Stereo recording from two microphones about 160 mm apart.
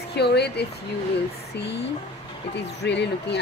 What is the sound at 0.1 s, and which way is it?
Speech, 90° left.